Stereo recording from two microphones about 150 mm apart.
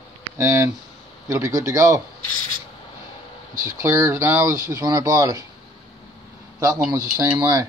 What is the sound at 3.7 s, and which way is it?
Speech, 20° right (ahead or behind).